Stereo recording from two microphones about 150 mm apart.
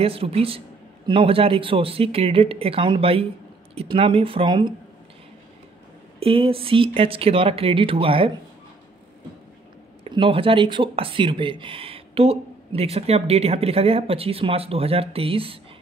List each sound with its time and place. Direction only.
0.0 s speech: 40° right (ahead or behind)
6.1 s speech: 40° right (ahead or behind)
10.0 s speech: 35° right (ahead or behind)